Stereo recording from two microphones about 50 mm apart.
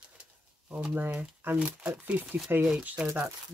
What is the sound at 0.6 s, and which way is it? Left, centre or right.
Speech, right.